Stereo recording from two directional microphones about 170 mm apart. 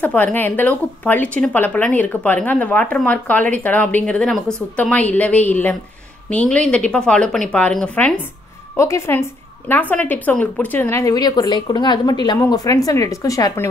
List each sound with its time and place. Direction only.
0.0 s a woman's voice: 10° left (ahead or behind)